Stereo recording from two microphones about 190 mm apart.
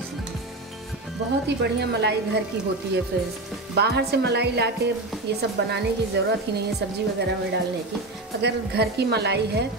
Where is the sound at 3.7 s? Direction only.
60° right (ahead or behind).